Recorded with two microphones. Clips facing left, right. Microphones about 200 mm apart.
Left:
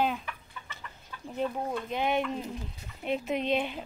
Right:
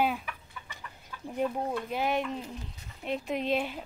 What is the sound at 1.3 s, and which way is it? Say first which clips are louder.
A woman's voice: right 1 dB; 5° right (ahead or behind).